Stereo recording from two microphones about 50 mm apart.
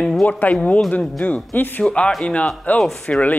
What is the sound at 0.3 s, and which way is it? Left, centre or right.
Speech, left.